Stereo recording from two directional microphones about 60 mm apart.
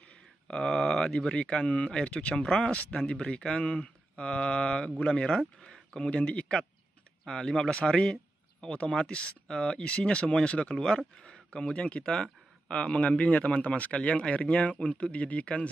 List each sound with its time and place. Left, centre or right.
0.0 s a man's voice: centre